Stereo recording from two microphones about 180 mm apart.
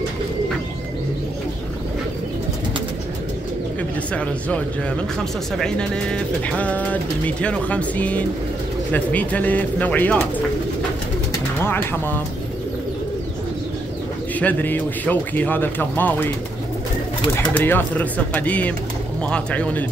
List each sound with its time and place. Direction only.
4.1 s speech: 5° left (ahead or behind)
11.6 s speech: 10° left (ahead or behind)
14.4 s speech: 10° left (ahead or behind)
17.6 s speech: 10° left (ahead or behind)